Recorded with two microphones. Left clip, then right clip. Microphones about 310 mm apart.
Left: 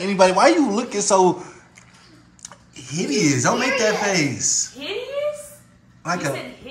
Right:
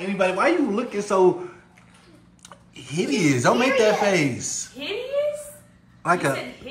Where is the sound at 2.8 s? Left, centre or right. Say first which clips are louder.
Left 2 dB; centre.